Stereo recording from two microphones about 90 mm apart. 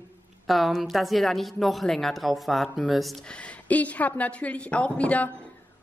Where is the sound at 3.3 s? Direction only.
15° left (ahead or behind).